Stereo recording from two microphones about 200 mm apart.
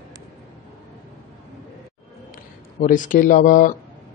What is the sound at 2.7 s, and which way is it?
Speech, 40° left (ahead or behind).